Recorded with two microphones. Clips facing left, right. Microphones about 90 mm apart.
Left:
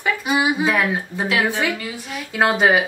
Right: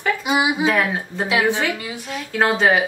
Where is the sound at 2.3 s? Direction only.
15° left (ahead or behind).